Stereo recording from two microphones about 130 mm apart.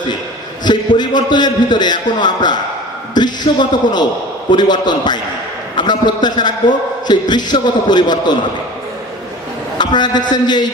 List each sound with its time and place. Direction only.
0.7 s a man's voice: 35° left (ahead or behind)
9.8 s a man's voice: 35° left (ahead or behind)